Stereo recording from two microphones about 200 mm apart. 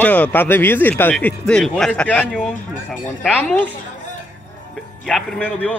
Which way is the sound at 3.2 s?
5° left (ahead or behind).